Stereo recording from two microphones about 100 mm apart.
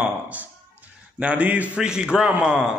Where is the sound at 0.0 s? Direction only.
15° right (ahead or behind).